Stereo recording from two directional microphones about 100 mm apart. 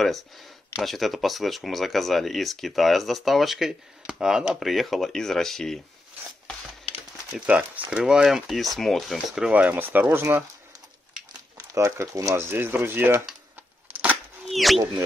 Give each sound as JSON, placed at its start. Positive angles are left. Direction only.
{"t": 0.7, "sound": "speech", "side_deg": 0}
{"t": 7.2, "sound": "speech", "side_deg": -10}
{"t": 11.5, "sound": "speech", "side_deg": -30}
{"t": 14.4, "sound": "a sound", "side_deg": 0}